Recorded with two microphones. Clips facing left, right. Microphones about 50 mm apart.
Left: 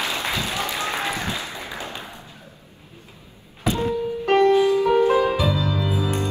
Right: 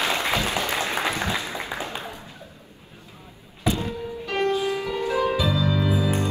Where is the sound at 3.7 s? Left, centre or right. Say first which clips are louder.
Left 4 dB; left.